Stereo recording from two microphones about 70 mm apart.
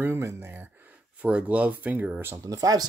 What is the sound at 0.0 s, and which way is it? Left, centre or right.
Speech, right.